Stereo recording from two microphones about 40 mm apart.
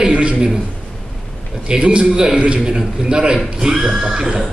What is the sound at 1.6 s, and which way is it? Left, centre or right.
A man's voice, right.